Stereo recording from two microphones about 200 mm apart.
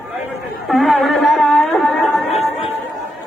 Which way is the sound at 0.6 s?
Centre (ahead or behind).